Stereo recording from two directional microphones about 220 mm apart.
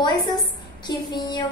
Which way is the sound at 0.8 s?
20° left (ahead or behind).